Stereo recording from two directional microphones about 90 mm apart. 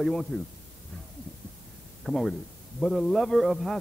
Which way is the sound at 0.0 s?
5° left (ahead or behind).